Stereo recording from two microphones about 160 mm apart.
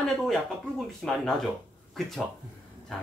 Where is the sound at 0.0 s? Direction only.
Centre (ahead or behind).